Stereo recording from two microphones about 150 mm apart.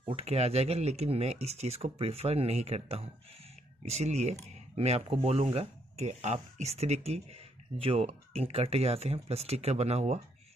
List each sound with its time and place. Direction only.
0.1 s speech: 45° right (ahead or behind)